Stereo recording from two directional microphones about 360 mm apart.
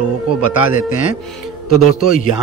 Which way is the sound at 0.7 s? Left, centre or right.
Left.